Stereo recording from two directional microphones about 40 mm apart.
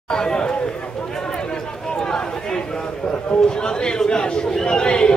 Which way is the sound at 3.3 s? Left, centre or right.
Left.